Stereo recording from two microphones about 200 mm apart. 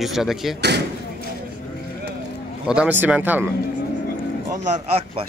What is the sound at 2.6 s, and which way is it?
Speech, 5° right (ahead or behind).